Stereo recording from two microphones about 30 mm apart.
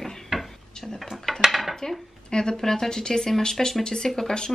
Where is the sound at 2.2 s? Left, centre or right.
Left.